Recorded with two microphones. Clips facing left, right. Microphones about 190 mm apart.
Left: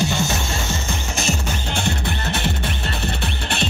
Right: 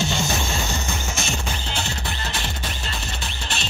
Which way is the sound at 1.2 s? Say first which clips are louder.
Left 4 dB; 55° left (ahead or behind).